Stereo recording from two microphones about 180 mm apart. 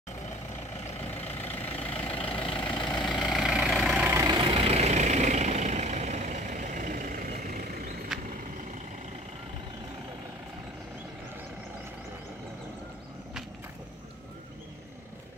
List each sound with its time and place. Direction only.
1.2 s vehicle: 10° left (ahead or behind)
1.9 s vehicle: 30° left (ahead or behind)
3.1 s vehicle: centre (ahead or behind); by 8.1 s 55° right (ahead or behind)